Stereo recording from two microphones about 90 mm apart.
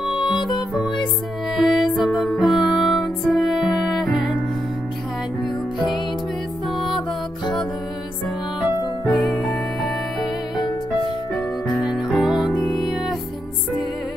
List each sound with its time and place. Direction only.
0.5 s music: centre (ahead or behind)
8.5 s music: 65° left (ahead or behind)
9.1 s music: centre (ahead or behind)
11.3 s music: centre (ahead or behind)